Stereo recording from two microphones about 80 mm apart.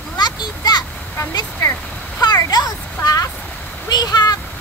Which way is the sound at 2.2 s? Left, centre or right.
Left.